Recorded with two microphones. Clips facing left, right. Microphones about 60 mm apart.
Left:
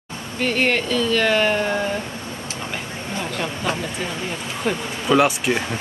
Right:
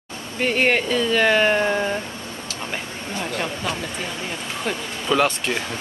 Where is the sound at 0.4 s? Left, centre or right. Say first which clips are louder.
Right 1 dB; centre.